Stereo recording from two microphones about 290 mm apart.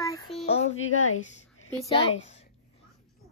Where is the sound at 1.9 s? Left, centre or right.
Centre.